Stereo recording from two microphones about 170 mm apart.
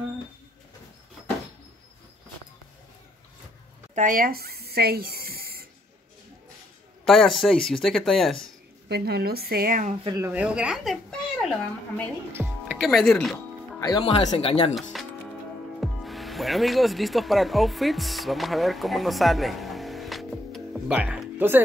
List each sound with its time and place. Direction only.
3.9 s a sound: 50° right (ahead or behind)
7.1 s speech: centre (ahead or behind)
8.8 s a woman's voice: 70° right (ahead or behind); by 9.9 s 55° right (ahead or behind)
10.0 s speech: 20° right (ahead or behind)
10.3 s speech: 5° right (ahead or behind)
12.3 s music: 15° right (ahead or behind)
12.7 s speech: centre (ahead or behind)
13.7 s speech: 20° left (ahead or behind)
14.0 s speech: 35° left (ahead or behind)
14.8 s speech: centre (ahead or behind)